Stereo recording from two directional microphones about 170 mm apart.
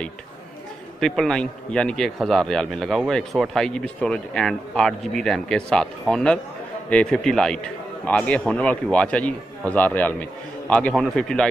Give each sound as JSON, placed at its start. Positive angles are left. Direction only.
{"t": 0.9, "sound": "a man's voice", "side_deg": 5}